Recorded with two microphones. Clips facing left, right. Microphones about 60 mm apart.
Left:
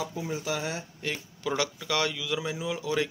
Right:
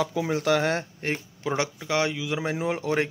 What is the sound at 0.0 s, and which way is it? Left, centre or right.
Speech, right.